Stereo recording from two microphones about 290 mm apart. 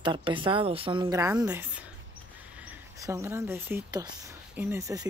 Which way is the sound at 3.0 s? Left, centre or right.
Centre.